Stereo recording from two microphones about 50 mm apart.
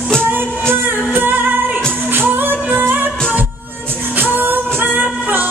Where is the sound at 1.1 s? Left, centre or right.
Right.